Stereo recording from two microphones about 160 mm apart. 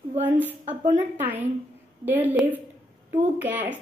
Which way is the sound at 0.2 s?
10° right (ahead or behind).